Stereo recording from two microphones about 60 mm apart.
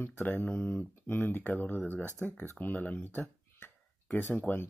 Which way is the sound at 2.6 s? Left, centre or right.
Left.